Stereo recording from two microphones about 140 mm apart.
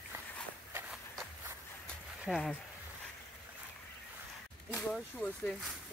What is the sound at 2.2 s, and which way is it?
Speech, centre (ahead or behind).